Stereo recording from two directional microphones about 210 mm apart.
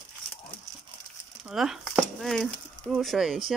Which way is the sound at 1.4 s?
Centre (ahead or behind).